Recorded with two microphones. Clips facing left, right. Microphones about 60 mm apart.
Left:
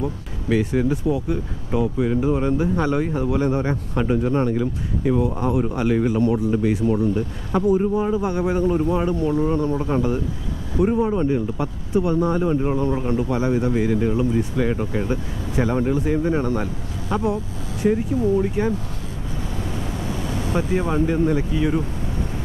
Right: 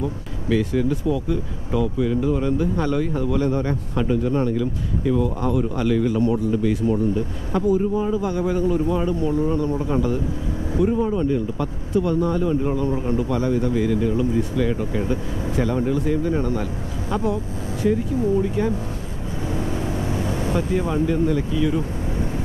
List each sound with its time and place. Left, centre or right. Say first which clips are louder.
0.5 s speech: left 1 dB; centre; by 8.6 s left
8.6 s speech: left 1 dB; left
19.5 s vehicle: right 5 dB; right
20.5 s speech: left 2 dB; left